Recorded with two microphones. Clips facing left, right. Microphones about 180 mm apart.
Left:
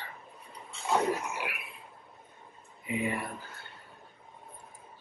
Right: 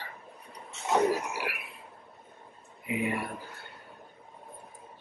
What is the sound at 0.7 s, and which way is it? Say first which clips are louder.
Speech: right 3 dB; 20° right (ahead or behind).